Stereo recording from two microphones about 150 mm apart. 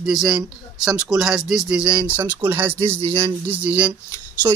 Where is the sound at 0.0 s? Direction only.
5° right (ahead or behind).